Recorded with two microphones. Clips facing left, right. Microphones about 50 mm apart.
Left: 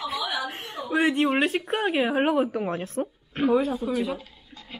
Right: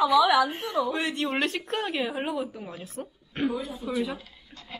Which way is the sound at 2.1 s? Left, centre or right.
Left.